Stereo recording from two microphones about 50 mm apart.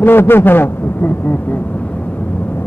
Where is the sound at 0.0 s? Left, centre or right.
Left.